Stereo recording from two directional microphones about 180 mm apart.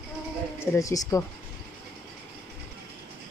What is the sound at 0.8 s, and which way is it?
Speech, 20° left (ahead or behind).